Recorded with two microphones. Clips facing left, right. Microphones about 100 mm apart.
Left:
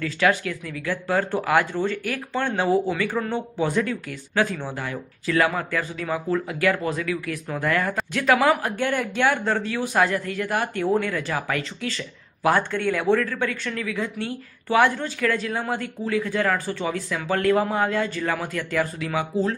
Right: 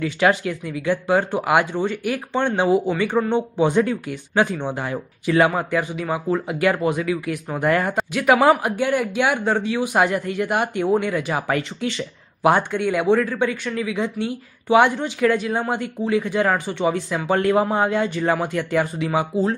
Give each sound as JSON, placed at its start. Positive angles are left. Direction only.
{"t": 0.0, "sound": "a man's voice", "side_deg": -25}
{"t": 8.1, "sound": "speech", "side_deg": -15}
{"t": 8.4, "sound": "a man's voice", "side_deg": -25}
{"t": 8.7, "sound": "a man's voice", "side_deg": -10}